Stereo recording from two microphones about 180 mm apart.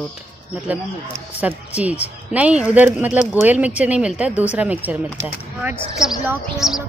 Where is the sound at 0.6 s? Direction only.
10° right (ahead or behind).